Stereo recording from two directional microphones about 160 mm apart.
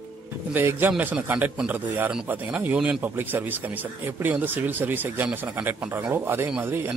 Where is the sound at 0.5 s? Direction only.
10° right (ahead or behind).